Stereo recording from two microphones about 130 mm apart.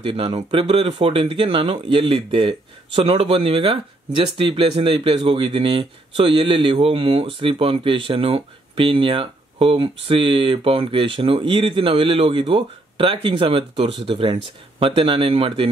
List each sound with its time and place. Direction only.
0.0 s speech: 45° right (ahead or behind)